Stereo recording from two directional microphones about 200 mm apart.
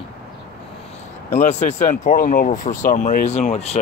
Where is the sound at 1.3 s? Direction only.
35° left (ahead or behind).